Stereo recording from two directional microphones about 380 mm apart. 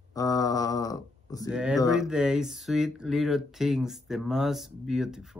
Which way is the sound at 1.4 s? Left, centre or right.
Centre.